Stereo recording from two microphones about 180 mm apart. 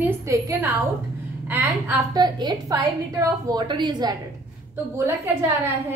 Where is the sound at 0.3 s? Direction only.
15° right (ahead or behind).